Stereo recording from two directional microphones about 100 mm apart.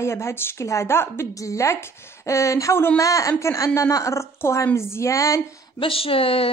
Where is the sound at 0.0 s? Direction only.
25° left (ahead or behind).